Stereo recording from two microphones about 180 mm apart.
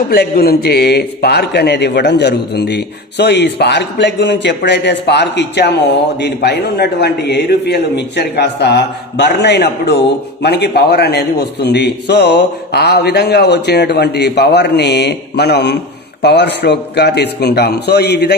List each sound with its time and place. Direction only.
0.1 s a man's voice: 60° left (ahead or behind)